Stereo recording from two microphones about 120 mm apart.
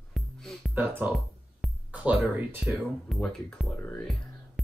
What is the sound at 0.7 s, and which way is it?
Speech, 15° right (ahead or behind).